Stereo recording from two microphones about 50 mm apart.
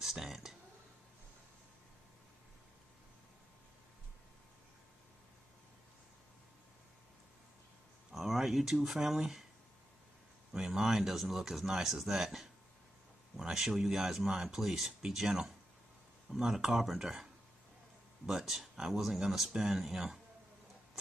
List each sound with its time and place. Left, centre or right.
0.0 s speech: centre
8.1 s speech: centre
10.5 s speech: centre
18.2 s speech: centre